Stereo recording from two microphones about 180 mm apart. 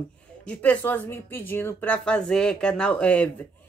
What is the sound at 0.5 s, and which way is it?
Speech, 10° left (ahead or behind).